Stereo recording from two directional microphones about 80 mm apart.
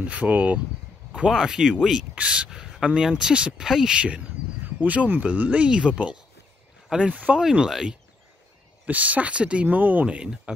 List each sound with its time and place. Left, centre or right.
0.0 s speech: centre
1.1 s speech: centre
7.4 s speech: centre
8.8 s speech: centre